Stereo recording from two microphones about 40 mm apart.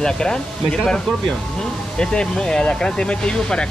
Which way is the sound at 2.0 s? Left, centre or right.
Centre.